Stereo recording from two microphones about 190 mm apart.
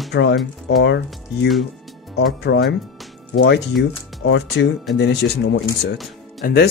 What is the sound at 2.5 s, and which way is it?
Speech, 65° left (ahead or behind).